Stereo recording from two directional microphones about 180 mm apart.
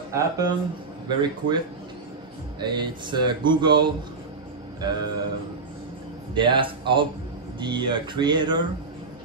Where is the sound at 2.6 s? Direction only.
25° right (ahead or behind).